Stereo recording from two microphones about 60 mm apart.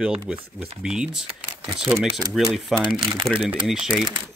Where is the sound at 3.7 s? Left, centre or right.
Centre.